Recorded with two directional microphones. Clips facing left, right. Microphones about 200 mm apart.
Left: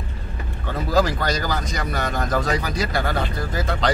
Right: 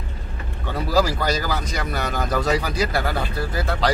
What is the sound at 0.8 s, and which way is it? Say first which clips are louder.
Speech: even; 10° right (ahead or behind).